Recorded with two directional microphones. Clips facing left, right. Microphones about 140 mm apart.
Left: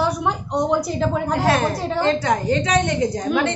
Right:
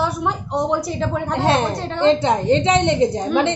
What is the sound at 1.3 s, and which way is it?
Speech, 25° right (ahead or behind).